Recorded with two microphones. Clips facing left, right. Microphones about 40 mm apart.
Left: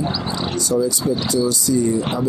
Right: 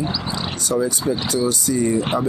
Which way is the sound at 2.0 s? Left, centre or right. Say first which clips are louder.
Right 1 dB; right.